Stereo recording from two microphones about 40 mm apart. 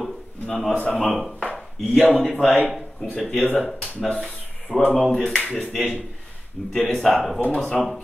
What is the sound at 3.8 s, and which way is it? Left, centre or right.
Speech, left.